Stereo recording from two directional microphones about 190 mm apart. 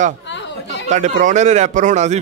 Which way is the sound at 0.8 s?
40° right (ahead or behind).